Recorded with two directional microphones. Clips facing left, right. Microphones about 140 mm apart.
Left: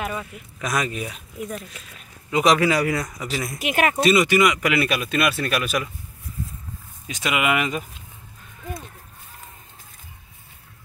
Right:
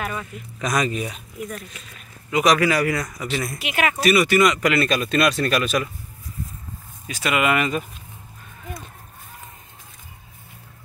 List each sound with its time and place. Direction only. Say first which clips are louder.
0.0 s speech: even; 15° left (ahead or behind)
0.6 s speech: right 3 dB; 5° left (ahead or behind)
2.3 s speech: even; 25° left (ahead or behind)
3.3 s speech: right 5 dB; 10° left (ahead or behind)
3.5 s speech: left 4 dB; 45° left (ahead or behind)
3.9 s speech: right 1 dB; 25° left (ahead or behind); by 5.9 s 10° left (ahead or behind)
7.1 s speech: right 2 dB; 15° left (ahead or behind)